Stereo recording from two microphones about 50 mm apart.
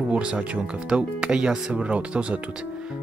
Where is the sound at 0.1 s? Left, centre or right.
Right.